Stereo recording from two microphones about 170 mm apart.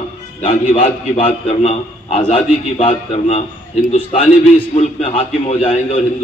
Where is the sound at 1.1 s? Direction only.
35° left (ahead or behind).